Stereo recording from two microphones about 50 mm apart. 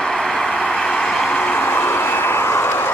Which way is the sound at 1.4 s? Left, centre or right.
Left.